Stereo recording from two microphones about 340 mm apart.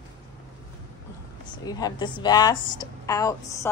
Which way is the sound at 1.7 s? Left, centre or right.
Centre.